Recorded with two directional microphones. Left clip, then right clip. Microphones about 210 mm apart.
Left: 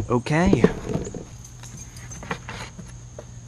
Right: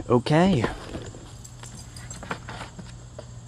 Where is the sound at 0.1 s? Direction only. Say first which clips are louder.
Right 1 dB; 10° right (ahead or behind).